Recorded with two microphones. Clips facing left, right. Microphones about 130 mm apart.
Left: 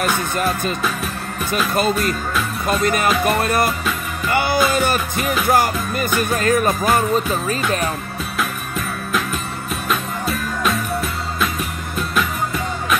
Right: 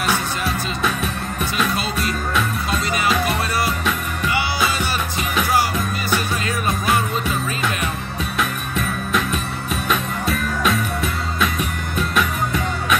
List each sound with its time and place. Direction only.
0.8 s music: centre (ahead or behind)
2.8 s music: 50° left (ahead or behind)
8.4 s music: centre (ahead or behind)